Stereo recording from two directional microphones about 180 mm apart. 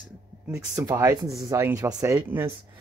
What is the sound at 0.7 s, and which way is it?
Speech, 15° right (ahead or behind).